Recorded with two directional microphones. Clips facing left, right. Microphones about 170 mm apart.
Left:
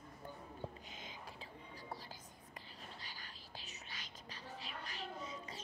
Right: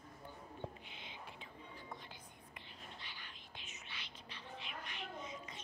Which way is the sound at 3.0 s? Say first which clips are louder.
Left 1 dB; 40° left (ahead or behind).